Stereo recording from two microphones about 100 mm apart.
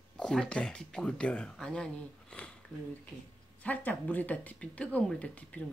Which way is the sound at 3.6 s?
15° left (ahead or behind).